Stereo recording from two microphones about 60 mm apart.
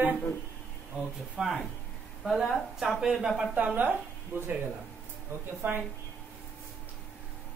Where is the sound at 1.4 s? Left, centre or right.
Centre.